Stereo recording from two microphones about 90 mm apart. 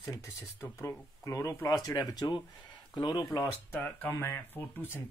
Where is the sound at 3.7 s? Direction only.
20° left (ahead or behind).